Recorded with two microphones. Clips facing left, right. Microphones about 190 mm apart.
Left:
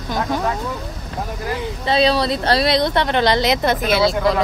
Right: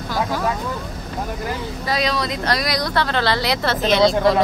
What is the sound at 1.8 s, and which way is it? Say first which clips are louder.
Speech: left 6 dB; 30° left (ahead or behind).